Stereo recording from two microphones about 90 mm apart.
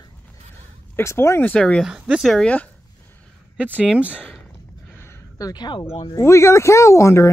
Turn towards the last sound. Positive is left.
turn(degrees=35)  # may be behind; listen again after turning